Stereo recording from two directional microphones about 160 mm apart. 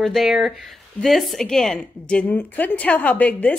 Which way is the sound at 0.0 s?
Centre (ahead or behind).